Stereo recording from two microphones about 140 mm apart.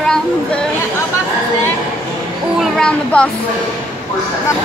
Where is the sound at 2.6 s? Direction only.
5° left (ahead or behind).